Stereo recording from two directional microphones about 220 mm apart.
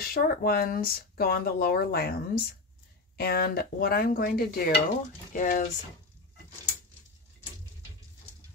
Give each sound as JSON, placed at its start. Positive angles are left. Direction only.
{"t": 0.0, "sound": "speech", "side_deg": 40}